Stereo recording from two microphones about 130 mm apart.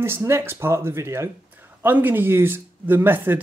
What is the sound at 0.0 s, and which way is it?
Speech, 20° right (ahead or behind).